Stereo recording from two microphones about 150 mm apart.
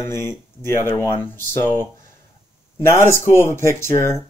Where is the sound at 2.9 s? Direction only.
15° left (ahead or behind).